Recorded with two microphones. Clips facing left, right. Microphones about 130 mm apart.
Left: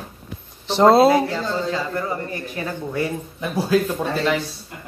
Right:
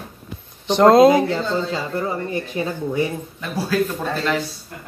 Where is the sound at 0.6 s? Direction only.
5° left (ahead or behind).